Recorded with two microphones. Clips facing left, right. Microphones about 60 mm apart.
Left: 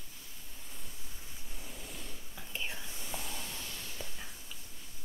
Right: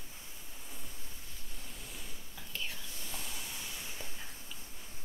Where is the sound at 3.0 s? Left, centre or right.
Centre.